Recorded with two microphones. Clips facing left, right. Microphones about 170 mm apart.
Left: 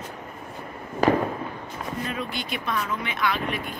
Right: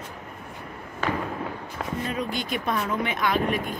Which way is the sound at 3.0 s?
45° right (ahead or behind).